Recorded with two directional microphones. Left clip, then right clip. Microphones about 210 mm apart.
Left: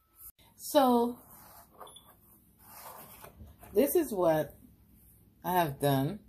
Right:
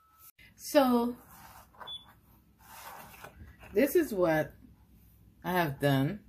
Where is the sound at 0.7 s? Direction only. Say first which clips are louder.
Left 1 dB; 15° right (ahead or behind).